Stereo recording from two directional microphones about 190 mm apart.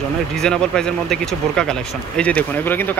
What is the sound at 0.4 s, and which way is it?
Speech, 5° left (ahead or behind).